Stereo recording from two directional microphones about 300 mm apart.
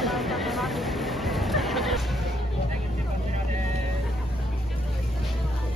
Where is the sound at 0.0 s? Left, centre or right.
Centre.